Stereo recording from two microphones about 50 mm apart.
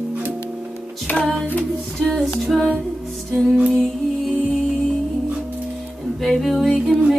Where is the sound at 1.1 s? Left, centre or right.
Left.